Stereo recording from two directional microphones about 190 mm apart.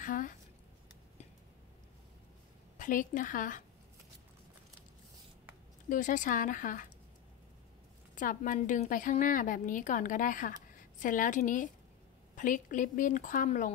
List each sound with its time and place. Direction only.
0.0 s a woman's voice: 45° left (ahead or behind)
2.8 s a woman's voice: 45° left (ahead or behind)
5.9 s a woman's voice: 45° left (ahead or behind)
8.1 s a woman's voice: 45° left (ahead or behind)